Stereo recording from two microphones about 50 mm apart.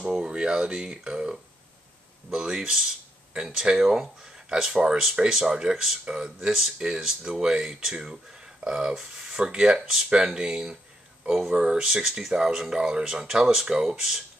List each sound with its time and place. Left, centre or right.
0.1 s speech: centre